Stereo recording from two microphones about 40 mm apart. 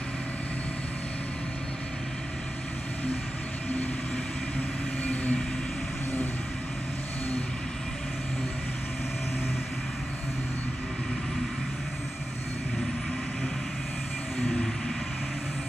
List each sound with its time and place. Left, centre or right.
5.0 s vehicle: left
14.4 s vehicle: centre